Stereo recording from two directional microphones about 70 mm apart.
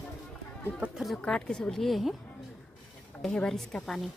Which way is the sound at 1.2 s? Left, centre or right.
Centre.